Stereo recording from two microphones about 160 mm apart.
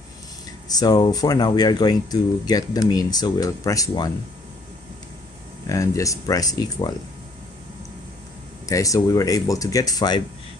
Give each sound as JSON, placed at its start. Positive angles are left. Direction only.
{"t": 0.7, "sound": "speech", "side_deg": 25}
{"t": 5.7, "sound": "speech", "side_deg": 20}
{"t": 8.6, "sound": "speech", "side_deg": 20}